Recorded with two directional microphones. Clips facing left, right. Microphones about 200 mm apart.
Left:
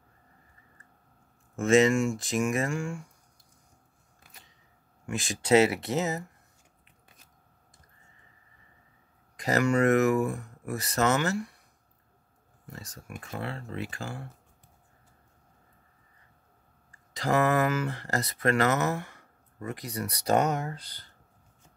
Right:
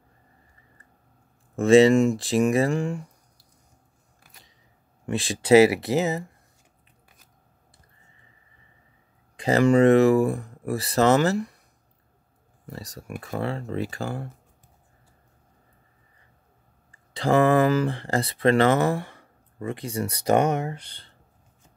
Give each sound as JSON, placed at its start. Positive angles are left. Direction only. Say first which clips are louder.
{"t": 1.6, "sound": "speech", "louder": "right 6 dB", "side_deg": -35}
{"t": 5.0, "sound": "speech", "louder": "right 6 dB", "side_deg": -35}
{"t": 9.4, "sound": "speech", "louder": "right 7 dB", "side_deg": -30}
{"t": 12.6, "sound": "speech", "louder": "right 7 dB", "side_deg": -35}
{"t": 17.1, "sound": "speech", "louder": "right 6 dB", "side_deg": -30}